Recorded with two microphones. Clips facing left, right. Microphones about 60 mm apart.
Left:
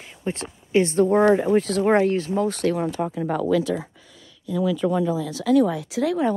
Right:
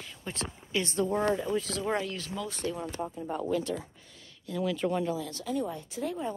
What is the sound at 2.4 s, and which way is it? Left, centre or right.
Speech, left.